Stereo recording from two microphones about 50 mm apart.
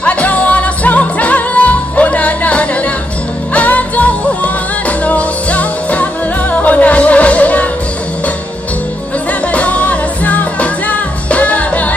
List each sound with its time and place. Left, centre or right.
0.0 s music: left
9.5 s music: left